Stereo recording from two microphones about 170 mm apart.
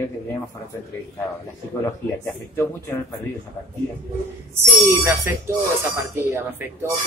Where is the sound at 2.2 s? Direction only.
15° left (ahead or behind).